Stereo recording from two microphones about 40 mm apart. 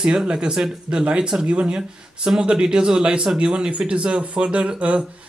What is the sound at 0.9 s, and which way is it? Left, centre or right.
Speech, right.